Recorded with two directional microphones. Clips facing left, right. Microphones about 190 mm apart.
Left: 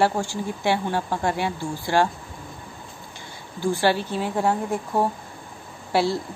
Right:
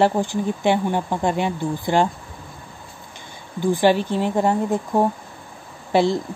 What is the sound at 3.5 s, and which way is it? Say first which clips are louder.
Speech: right 4 dB; 15° right (ahead or behind).